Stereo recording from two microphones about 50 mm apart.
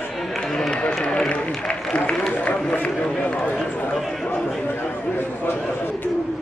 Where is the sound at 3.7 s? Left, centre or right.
Left.